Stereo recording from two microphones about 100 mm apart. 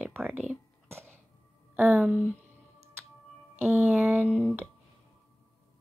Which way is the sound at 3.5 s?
20° right (ahead or behind).